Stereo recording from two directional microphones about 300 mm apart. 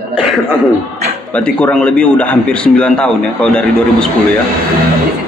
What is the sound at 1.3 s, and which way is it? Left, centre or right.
A man's voice, centre.